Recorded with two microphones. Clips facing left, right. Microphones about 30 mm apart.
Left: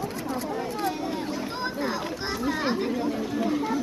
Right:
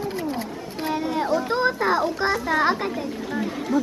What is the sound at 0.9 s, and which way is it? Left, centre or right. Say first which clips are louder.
Chatter: right 5 dB; centre.